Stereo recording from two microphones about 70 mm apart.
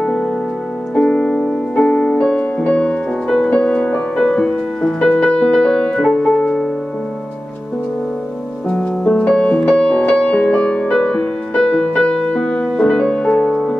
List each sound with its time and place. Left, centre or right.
0.0 s music: centre
8.7 s music: centre